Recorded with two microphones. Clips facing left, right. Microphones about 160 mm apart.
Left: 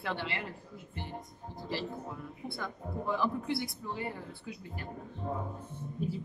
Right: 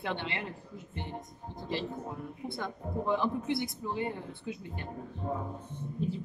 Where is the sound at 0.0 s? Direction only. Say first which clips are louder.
Right 1 dB; 20° right (ahead or behind).